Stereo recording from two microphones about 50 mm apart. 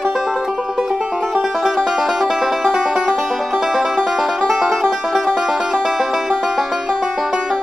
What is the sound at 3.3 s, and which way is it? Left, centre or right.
Music, centre.